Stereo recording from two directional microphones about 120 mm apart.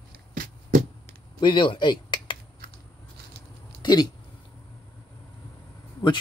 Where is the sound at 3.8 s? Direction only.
35° left (ahead or behind).